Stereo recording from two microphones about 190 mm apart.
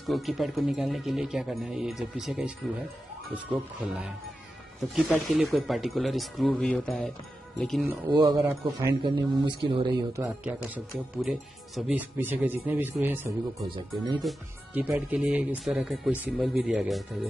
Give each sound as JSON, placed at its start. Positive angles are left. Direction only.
{"t": 0.1, "sound": "speech", "side_deg": 0}
{"t": 5.1, "sound": "speech", "side_deg": 0}
{"t": 8.1, "sound": "speech", "side_deg": -20}
{"t": 9.0, "sound": "speech", "side_deg": -25}
{"t": 10.4, "sound": "speech", "side_deg": -5}
{"t": 13.7, "sound": "speech", "side_deg": -25}
{"t": 14.2, "sound": "speech", "side_deg": -10}